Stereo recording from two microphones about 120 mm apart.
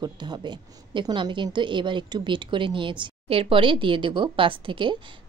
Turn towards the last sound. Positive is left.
turn(degrees=-45)  # may be behind; listen again after turning